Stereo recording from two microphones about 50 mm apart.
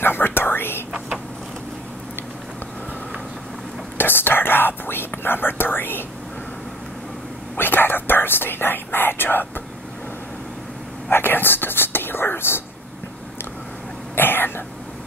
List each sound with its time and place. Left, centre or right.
0.0 s whispering: left
4.0 s whispering: left
7.5 s whispering: left
11.1 s speech: left
14.1 s throat clearing: left